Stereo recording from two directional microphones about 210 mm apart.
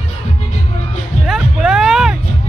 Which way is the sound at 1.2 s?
Centre (ahead or behind).